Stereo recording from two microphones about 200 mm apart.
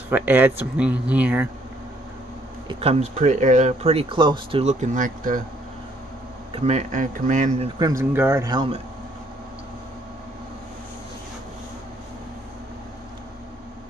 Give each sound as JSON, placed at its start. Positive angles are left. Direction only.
{"t": 0.1, "sound": "speech", "side_deg": -10}
{"t": 2.7, "sound": "speech", "side_deg": -30}
{"t": 6.5, "sound": "speech", "side_deg": -35}
{"t": 7.8, "sound": "speech", "side_deg": -15}